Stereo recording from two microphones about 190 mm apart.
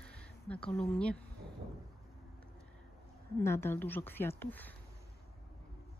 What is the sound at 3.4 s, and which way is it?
Speech, 15° left (ahead or behind).